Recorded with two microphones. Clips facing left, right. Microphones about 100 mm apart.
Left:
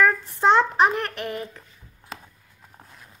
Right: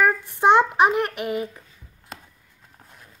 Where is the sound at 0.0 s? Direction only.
15° right (ahead or behind).